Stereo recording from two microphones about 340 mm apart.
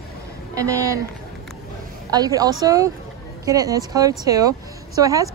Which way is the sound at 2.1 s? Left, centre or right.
Centre.